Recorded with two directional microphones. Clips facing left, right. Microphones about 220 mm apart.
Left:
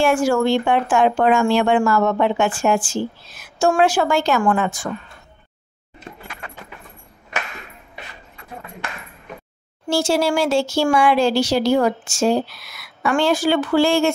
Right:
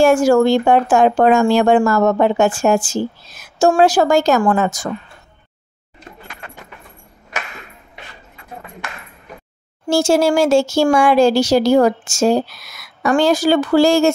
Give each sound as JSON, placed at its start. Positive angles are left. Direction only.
{"t": 0.0, "sound": "a woman's voice", "side_deg": -40}
{"t": 9.8, "sound": "speech", "side_deg": -45}